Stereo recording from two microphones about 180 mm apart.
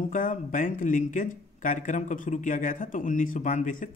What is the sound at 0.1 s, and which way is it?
Speech, 45° left (ahead or behind).